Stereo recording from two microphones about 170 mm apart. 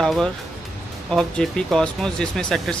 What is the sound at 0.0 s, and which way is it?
Speech, 5° left (ahead or behind).